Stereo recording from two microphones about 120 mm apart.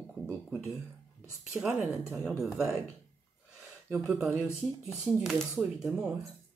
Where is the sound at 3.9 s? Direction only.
5° right (ahead or behind).